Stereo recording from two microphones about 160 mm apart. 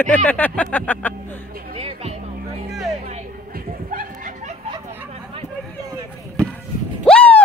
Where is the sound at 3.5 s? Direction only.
60° right (ahead or behind).